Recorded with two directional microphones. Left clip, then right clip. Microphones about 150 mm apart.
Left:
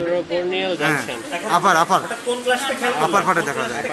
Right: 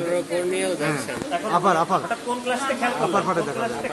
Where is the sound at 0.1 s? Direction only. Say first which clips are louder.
Left 3 dB; 30° left (ahead or behind).